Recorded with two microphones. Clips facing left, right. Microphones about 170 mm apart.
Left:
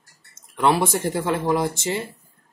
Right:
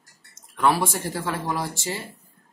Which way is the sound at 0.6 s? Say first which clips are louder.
Left 2 dB; 25° left (ahead or behind).